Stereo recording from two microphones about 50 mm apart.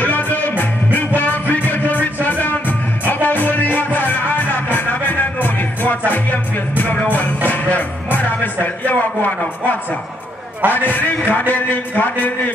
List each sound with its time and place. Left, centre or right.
0.0 s music: left
7.1 s a man's voice: left
7.4 s music: left
8.6 s a man's voice: left